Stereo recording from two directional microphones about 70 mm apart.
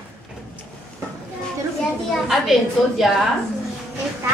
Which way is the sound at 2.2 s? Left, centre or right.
Centre.